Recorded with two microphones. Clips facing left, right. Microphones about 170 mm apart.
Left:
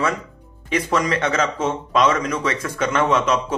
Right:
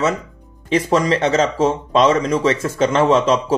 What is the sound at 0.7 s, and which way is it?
Speech, 30° right (ahead or behind).